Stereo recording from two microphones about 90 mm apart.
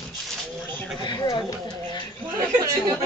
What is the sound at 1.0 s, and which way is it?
Speech, 55° left (ahead or behind).